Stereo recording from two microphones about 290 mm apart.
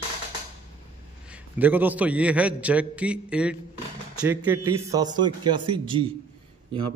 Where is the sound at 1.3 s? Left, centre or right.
Centre.